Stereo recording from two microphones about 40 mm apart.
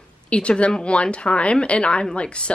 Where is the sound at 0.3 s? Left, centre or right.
Left.